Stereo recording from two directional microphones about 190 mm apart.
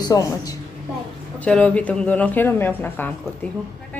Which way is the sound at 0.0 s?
20° left (ahead or behind).